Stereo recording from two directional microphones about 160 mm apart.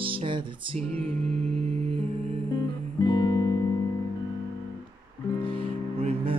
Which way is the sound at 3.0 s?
25° left (ahead or behind).